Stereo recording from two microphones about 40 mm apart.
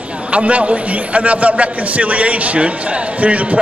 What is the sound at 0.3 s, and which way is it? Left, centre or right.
A man's voice, right.